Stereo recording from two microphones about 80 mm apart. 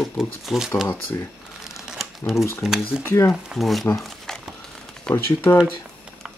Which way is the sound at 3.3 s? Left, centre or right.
Centre.